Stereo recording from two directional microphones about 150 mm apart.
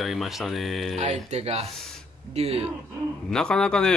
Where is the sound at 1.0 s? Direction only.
45° right (ahead or behind).